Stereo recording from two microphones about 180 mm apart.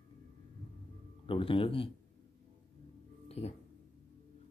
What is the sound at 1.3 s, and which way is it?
Speech, 30° left (ahead or behind).